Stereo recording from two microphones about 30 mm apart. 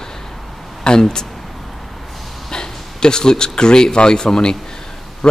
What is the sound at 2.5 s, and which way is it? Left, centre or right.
A man's voice, left.